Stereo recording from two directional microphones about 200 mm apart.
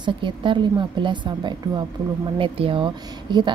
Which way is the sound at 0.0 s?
25° right (ahead or behind).